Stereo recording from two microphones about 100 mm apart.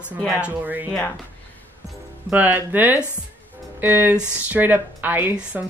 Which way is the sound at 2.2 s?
15° right (ahead or behind).